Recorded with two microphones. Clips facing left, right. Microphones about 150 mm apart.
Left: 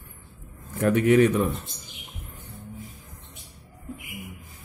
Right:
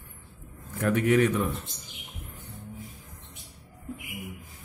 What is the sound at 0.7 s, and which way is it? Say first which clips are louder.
Speech: left 4 dB; 25° left (ahead or behind).